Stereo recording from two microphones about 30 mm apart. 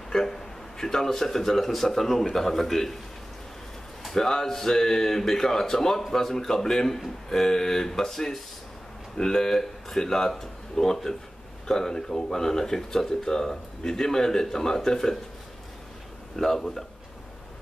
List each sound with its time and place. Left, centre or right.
0.1 s a man's voice: centre
4.1 s speech: centre
16.5 s speech: centre